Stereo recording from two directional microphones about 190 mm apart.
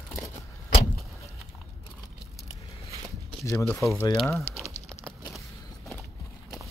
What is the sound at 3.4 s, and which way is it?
Speech, 10° left (ahead or behind).